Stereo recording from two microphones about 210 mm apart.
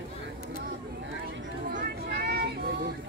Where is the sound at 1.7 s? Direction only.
45° right (ahead or behind).